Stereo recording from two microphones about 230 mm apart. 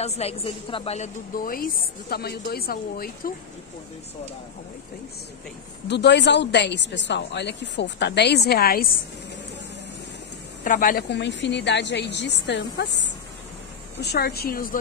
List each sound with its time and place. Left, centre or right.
0.0 s a woman's voice: left
5.9 s a woman's voice: left
10.6 s a woman's voice: left